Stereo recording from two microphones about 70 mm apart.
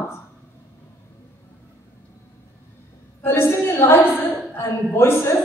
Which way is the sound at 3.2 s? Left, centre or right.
Left.